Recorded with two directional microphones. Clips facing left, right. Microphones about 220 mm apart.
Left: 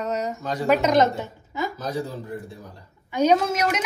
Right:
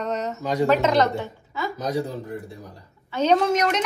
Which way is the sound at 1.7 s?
20° right (ahead or behind).